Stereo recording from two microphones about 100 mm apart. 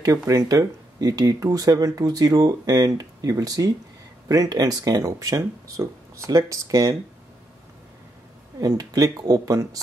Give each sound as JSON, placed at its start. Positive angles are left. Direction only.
{"t": 0.3, "sound": "speech", "side_deg": -30}
{"t": 8.5, "sound": "speech", "side_deg": -40}